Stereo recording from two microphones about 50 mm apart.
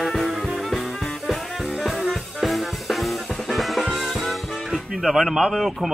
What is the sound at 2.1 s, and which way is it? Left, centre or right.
Music, centre.